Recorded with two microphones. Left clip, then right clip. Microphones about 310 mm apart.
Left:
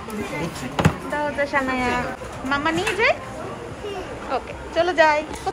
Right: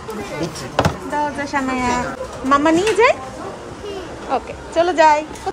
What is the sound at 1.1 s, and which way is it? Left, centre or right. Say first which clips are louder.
A woman's voice: right 1 dB; centre.